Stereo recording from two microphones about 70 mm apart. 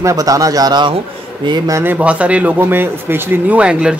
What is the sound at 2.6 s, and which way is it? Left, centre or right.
A man's voice, right.